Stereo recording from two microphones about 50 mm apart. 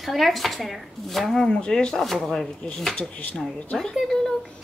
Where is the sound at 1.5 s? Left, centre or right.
Centre.